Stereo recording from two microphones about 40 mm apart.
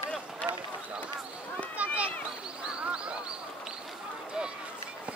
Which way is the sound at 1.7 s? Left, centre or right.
Right.